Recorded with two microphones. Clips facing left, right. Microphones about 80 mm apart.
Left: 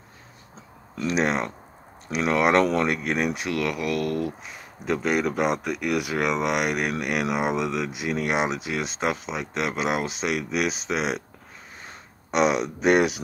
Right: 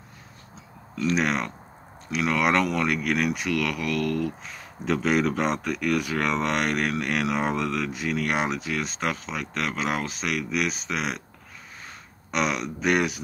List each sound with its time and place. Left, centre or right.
1.0 s speech: left
4.8 s speech: centre; by 11.2 s left
12.3 s speech: left